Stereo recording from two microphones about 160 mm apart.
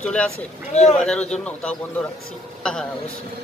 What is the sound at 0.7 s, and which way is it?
Speech, 45° left (ahead or behind).